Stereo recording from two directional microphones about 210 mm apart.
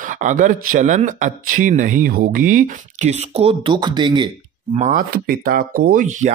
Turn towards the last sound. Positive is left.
turn(degrees=-35)  # may be behind; listen again after turning